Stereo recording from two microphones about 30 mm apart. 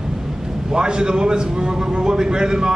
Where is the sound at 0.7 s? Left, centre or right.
Right.